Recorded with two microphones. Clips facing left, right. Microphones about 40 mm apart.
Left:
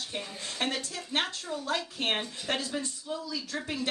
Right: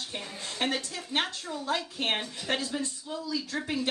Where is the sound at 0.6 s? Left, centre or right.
Right.